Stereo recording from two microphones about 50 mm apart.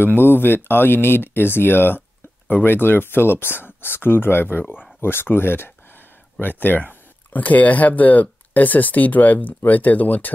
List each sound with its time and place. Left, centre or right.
0.0 s speech: left
6.4 s speech: left